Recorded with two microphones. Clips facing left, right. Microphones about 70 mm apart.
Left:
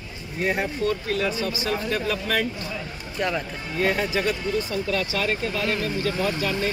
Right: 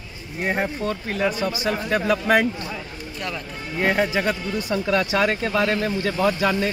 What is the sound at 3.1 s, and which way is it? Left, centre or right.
Speech, centre.